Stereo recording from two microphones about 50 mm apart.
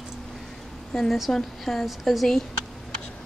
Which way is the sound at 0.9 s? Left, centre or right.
Centre.